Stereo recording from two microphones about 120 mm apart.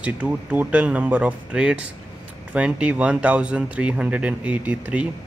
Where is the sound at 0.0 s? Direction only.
15° right (ahead or behind).